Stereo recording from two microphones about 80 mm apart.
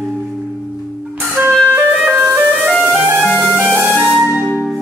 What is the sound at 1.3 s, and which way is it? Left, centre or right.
Music, right.